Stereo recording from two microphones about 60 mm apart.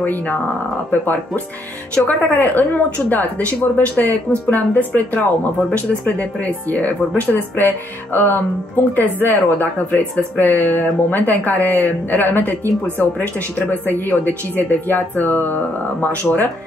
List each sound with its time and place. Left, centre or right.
1.0 s speech: left